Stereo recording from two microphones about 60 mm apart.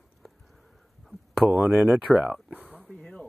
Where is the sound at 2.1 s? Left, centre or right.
Centre.